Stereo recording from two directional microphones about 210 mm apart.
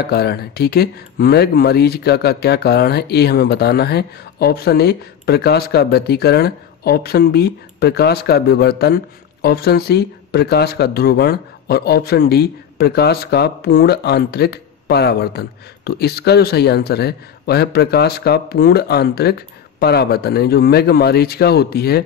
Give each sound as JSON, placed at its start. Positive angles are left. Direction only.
{"t": 0.0, "sound": "speech", "side_deg": 50}